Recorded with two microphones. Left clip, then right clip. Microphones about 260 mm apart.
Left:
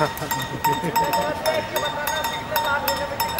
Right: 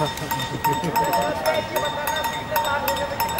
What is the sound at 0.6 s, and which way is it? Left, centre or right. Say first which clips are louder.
Speech: left 1 dB; centre.